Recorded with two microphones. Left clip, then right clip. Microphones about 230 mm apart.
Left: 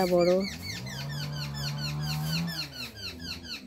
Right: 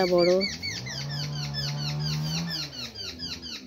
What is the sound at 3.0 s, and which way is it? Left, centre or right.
Squeak, centre.